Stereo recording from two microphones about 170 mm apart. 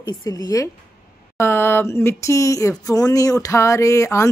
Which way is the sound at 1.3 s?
15° left (ahead or behind).